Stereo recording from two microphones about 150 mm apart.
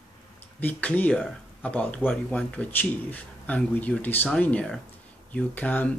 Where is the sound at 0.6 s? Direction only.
10° left (ahead or behind).